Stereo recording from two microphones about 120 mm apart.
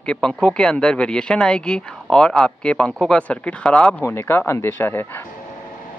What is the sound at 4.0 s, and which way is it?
Speech, 20° left (ahead or behind).